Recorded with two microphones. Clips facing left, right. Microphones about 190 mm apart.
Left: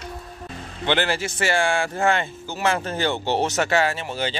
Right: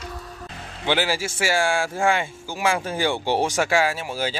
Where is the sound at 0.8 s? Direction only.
5° right (ahead or behind).